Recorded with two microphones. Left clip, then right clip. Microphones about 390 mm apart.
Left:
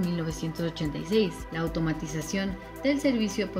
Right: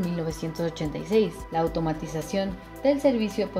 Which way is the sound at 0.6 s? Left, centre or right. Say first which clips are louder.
Right 3 dB; centre.